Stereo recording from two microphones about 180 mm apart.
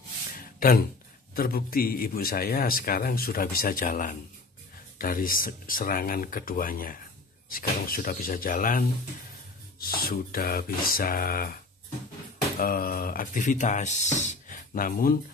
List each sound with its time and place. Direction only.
0.4 s a sound: 55° left (ahead or behind)
1.3 s a man's voice: 55° left (ahead or behind)
12.5 s speech: 50° left (ahead or behind)